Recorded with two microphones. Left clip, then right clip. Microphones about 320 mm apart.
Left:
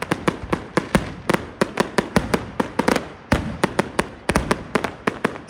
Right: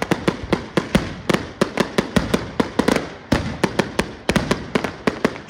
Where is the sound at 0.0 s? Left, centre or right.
Centre.